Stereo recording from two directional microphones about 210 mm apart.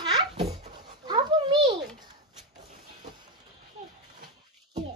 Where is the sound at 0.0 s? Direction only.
25° right (ahead or behind).